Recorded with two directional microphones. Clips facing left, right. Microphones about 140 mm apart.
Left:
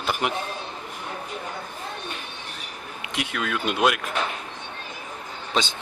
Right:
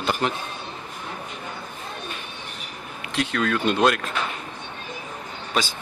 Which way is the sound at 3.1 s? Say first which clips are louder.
Right 5 dB; 10° left (ahead or behind).